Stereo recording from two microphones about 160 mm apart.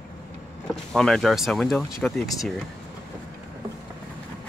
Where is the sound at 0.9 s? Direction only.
Centre (ahead or behind).